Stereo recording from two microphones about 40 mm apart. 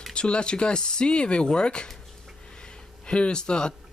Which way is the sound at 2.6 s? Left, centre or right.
Left.